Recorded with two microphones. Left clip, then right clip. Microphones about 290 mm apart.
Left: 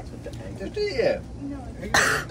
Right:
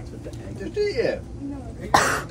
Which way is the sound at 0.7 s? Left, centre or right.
Centre.